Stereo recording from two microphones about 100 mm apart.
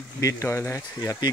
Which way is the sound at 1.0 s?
40° left (ahead or behind).